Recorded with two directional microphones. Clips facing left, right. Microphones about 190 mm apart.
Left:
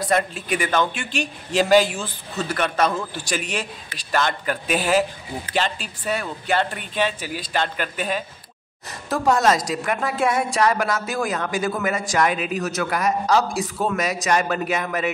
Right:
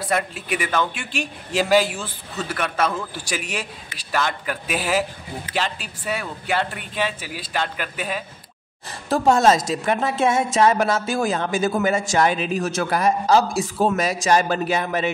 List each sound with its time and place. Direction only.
0.0 s a man's voice: 5° right (ahead or behind)
9.1 s a woman's voice: 25° right (ahead or behind)